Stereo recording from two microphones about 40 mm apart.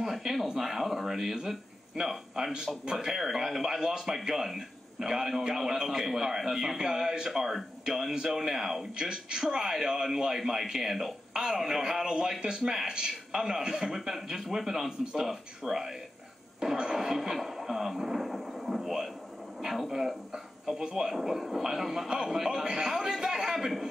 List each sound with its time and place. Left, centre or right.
0.0 s a man's voice: centre
8.9 s a man's voice: centre
11.3 s a man's voice: centre
13.9 s a man's voice: centre
16.5 s television: centre
19.9 s a man's voice: centre